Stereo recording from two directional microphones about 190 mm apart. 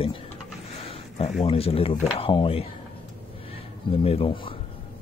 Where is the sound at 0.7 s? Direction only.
30° left (ahead or behind).